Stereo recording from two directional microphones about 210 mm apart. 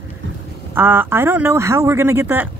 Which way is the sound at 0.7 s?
10° right (ahead or behind).